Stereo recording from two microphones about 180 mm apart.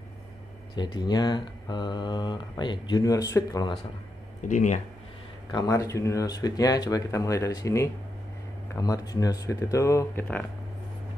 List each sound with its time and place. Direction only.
0.7 s speech: 25° left (ahead or behind)
4.5 s speech: 45° left (ahead or behind)
5.5 s speech: 20° left (ahead or behind)